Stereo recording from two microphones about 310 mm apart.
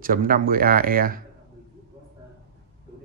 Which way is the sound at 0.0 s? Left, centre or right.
Right.